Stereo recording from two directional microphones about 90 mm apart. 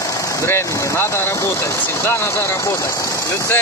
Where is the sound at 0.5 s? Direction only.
25° left (ahead or behind).